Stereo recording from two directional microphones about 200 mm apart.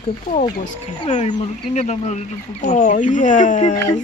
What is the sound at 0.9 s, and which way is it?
Speech, 30° left (ahead or behind).